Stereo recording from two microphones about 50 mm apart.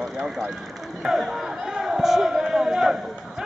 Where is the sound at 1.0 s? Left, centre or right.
Centre.